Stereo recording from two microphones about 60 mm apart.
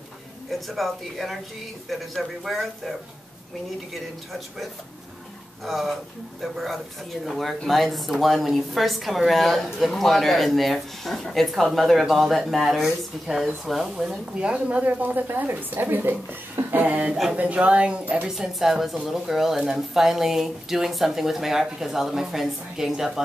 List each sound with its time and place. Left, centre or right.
0.5 s speech: centre
3.9 s speech: centre
5.7 s a woman's voice: centre; by 16.9 s right
16.9 s speech: right
18.3 s speech: centre